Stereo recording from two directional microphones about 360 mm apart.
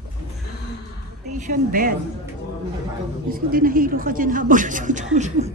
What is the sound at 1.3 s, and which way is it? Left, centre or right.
Speech, right.